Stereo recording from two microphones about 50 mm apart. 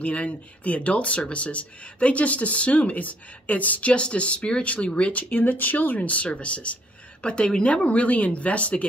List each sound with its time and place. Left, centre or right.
0.0 s speech: left